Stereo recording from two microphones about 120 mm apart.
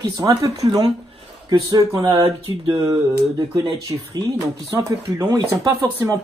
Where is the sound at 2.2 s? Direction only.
45° right (ahead or behind).